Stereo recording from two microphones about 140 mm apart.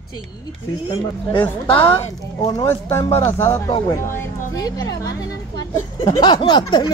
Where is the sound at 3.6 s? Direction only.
30° left (ahead or behind).